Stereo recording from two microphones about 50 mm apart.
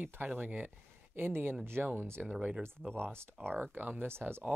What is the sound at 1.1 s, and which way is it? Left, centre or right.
Speech, right.